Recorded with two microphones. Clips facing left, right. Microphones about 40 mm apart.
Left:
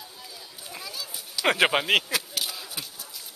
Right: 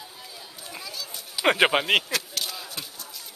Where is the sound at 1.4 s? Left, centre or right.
Centre.